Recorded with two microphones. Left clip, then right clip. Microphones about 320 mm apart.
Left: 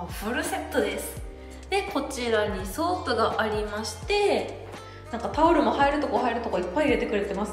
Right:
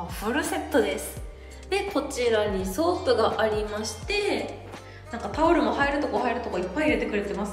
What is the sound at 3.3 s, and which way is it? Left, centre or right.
A woman's voice, centre.